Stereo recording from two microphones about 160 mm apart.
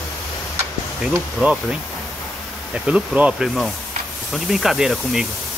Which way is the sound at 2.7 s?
5° right (ahead or behind).